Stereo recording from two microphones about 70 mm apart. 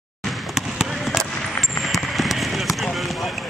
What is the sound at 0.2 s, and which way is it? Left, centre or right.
Basketball bounce, centre.